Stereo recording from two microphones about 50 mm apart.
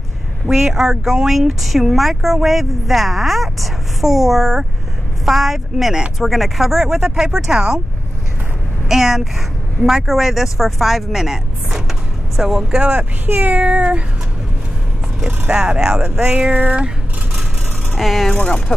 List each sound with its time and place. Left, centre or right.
0.5 s speech: centre
8.8 s speech: centre
13.3 s speech: right
15.5 s speech: centre
16.3 s speech: right
17.9 s speech: centre
18.3 s speech: left